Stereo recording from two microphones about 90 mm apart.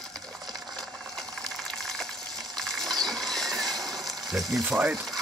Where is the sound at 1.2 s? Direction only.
5° left (ahead or behind).